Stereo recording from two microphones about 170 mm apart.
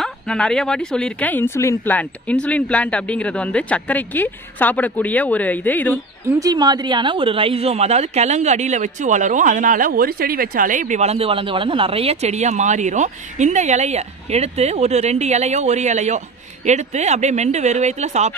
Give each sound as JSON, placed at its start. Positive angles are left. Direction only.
{"t": 0.0, "sound": "speech", "side_deg": 5}
{"t": 6.2, "sound": "a woman's voice", "side_deg": -20}